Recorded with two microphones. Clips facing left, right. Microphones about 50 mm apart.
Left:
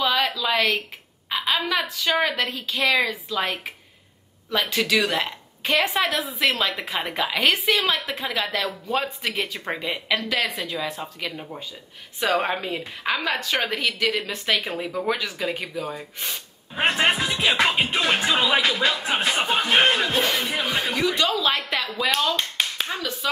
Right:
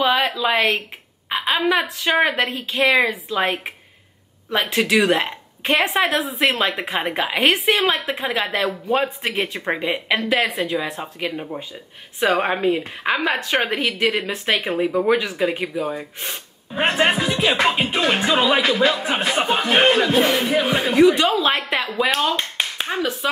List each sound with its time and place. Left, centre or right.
0.0 s a woman's voice: right
4.5 s a woman's voice: right
16.7 s music: centre
20.6 s a woman's voice: centre